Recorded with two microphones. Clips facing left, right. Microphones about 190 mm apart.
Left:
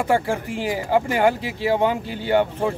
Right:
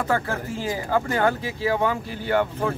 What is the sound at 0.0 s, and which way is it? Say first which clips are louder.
Speech: left 4 dB; 15° left (ahead or behind).